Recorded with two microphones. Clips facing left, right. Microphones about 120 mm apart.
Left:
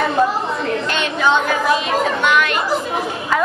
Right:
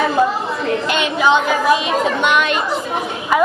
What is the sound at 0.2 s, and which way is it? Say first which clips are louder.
Chatter: even; centre (ahead or behind).